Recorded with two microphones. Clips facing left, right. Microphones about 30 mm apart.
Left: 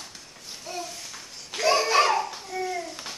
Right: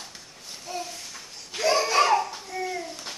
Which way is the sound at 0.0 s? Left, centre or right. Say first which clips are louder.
Even; centre.